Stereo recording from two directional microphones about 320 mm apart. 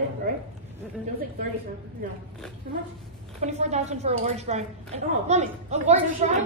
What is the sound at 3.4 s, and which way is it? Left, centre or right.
A woman's voice, right.